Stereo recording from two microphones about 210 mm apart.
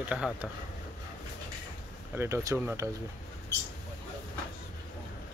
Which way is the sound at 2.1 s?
10° right (ahead or behind).